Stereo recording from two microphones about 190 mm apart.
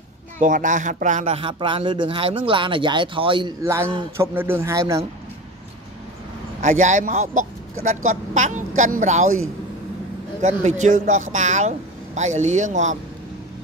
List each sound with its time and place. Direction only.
0.4 s speech: 45° right (ahead or behind)
1.4 s speech: 25° right (ahead or behind)
3.6 s a man's voice: 15° right (ahead or behind)
6.6 s speech: 40° right (ahead or behind)
10.4 s speech: 40° right (ahead or behind)